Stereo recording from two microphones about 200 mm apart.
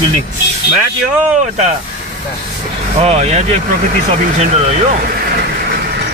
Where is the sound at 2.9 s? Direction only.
30° right (ahead or behind).